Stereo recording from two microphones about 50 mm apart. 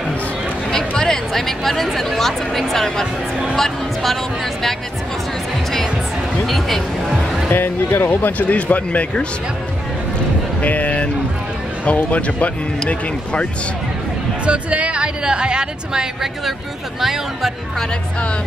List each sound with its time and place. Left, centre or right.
0.7 s speech: centre
6.4 s speech: centre
7.4 s speech: left
10.6 s speech: left
12.1 s speech: left
14.4 s a woman's voice: right; by 17.5 s centre